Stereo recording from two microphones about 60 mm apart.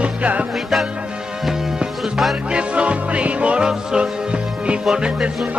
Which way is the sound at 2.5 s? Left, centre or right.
Centre.